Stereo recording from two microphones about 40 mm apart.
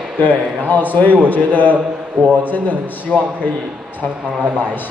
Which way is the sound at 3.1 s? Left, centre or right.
Left.